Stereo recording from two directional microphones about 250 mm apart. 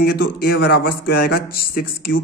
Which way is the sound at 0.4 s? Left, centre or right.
Left.